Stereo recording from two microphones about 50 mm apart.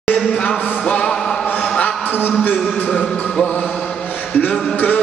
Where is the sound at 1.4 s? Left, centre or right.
Left.